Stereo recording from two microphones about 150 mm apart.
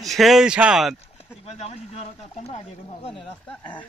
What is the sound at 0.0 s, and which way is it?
Speech, centre (ahead or behind).